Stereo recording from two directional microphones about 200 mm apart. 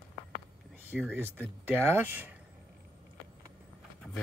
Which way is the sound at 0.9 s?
10° right (ahead or behind).